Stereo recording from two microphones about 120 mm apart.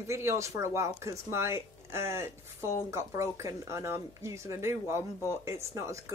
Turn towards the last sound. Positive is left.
turn(degrees=-25)  # may be behind; listen again after turning